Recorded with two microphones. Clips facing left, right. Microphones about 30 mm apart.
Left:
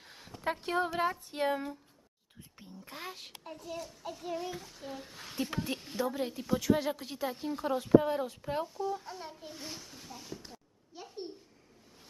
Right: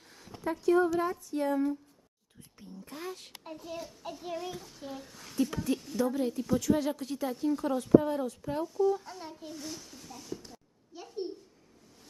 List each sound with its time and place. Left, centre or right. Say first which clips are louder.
0.5 s speech: right 6 dB; left
2.8 s a woman's voice: right 3 dB; left
3.4 s child singing: right 1 dB; centre
4.4 s a child's voice: even; centre
5.0 s a woman's voice: right 7 dB; left
8.8 s a child's voice: right 7 dB; centre
9.6 s a woman's voice: right 2 dB; left
9.8 s a sound: right 3 dB; centre